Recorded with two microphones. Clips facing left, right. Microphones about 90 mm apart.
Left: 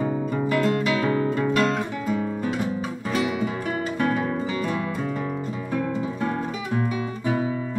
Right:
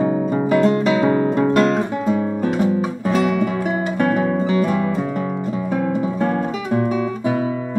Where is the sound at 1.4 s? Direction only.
35° right (ahead or behind).